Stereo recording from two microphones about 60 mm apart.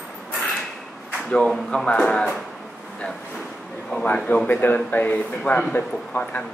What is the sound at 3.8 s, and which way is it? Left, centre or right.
Speech, centre.